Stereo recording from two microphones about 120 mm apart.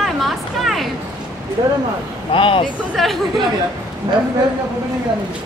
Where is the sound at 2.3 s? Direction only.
45° left (ahead or behind).